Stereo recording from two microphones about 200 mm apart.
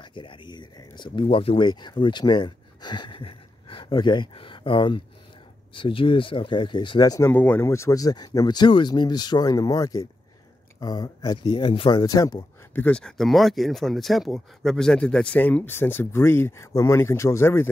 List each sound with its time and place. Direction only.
0.0 s speech: 25° left (ahead or behind)
12.8 s speech: 5° left (ahead or behind)